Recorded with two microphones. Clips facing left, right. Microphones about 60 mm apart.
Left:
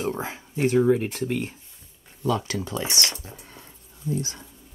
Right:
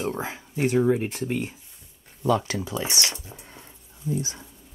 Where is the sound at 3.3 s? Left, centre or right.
Centre.